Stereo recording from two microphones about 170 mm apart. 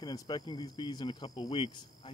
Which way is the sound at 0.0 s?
25° left (ahead or behind).